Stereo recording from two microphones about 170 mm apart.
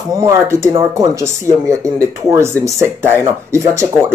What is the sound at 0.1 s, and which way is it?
Speech, 20° right (ahead or behind).